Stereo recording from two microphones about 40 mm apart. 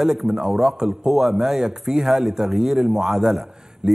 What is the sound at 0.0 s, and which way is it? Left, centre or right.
A man's voice, centre.